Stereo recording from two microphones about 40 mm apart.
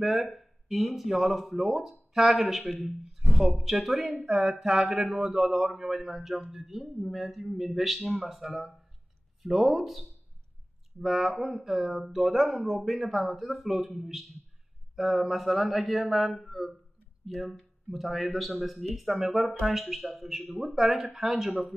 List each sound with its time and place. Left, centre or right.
0.0 s a man's voice: centre